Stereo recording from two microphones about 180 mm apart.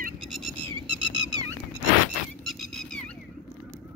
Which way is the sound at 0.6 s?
25° right (ahead or behind).